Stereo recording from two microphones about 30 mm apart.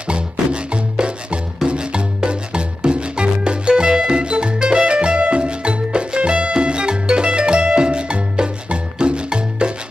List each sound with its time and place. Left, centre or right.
0.1 s music: right